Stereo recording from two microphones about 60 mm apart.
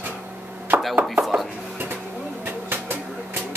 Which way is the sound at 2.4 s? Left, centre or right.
Right.